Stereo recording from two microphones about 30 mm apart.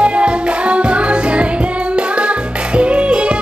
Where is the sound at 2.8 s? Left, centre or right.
Right.